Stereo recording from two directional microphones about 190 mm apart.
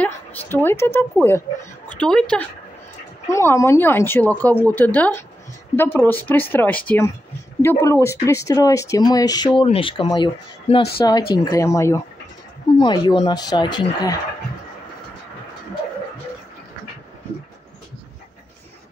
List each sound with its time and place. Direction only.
0.0 s a sound: 10° left (ahead or behind)
1.9 s a woman's voice: 5° left (ahead or behind)
3.3 s speech: 15° left (ahead or behind)